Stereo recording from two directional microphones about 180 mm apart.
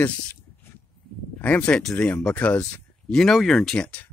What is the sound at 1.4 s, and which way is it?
Speech, 5° left (ahead or behind).